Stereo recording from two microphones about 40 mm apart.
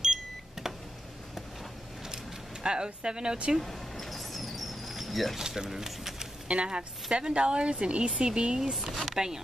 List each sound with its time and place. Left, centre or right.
0.0 s beep: centre
2.6 s speech: right
3.6 s a sound: centre
5.7 s speech: centre
6.4 s speech: right
8.7 s speech: centre